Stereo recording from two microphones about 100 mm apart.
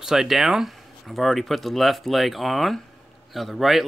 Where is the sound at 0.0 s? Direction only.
5° right (ahead or behind).